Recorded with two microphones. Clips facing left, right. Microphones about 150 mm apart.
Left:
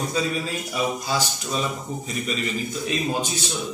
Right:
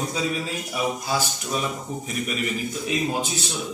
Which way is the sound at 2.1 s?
10° right (ahead or behind).